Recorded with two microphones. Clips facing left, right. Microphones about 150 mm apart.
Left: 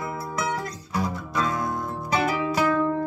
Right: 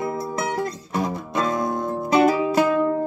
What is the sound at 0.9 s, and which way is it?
Music, 25° right (ahead or behind).